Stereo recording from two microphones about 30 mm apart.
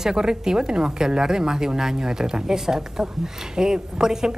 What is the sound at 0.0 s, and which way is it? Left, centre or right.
A woman's voice, right.